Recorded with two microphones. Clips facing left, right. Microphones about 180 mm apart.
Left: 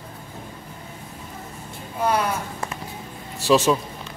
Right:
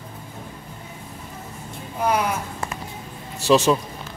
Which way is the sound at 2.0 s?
15° right (ahead or behind).